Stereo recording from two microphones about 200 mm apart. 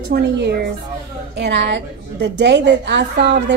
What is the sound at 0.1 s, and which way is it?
A woman's voice, 55° right (ahead or behind).